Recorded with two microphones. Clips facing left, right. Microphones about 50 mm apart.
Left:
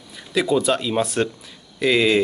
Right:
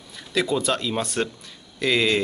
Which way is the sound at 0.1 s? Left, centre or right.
Centre.